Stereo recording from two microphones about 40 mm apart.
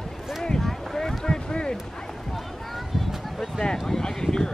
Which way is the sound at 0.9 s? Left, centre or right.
Centre.